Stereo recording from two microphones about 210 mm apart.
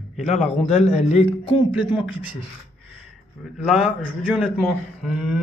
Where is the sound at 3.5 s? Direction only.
Centre (ahead or behind).